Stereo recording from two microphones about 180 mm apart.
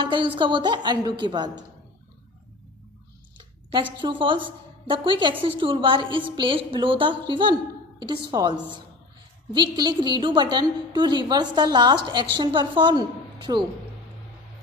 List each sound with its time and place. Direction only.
0.0 s a woman's voice: 25° right (ahead or behind)
4.0 s a woman's voice: 25° right (ahead or behind)